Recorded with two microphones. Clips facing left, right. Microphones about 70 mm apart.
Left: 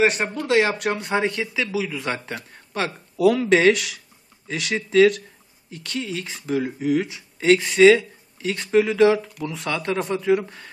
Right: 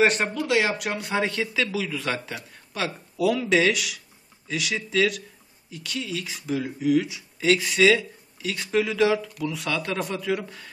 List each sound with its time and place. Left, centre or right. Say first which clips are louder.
0.0 s speech: left 1 dB; centre
0.5 s speech: left 6 dB; left
1.3 s speech: left 1 dB; centre
2.0 s speech: left 1 dB; centre
2.2 s speech: left 3 dB; left